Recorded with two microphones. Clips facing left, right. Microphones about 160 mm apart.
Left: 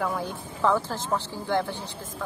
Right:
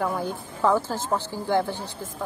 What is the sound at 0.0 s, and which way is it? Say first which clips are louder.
A woman's voice: right 2 dB; 5° right (ahead or behind).